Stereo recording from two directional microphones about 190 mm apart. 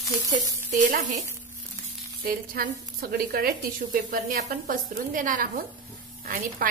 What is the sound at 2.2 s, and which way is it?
A woman's voice, 50° right (ahead or behind).